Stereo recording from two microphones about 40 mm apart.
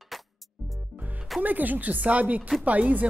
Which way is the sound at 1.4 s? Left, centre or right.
Right.